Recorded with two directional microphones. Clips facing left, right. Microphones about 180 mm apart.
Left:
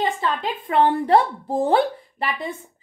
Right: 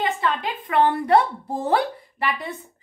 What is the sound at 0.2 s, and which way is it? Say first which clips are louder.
Speech: even; 30° left (ahead or behind).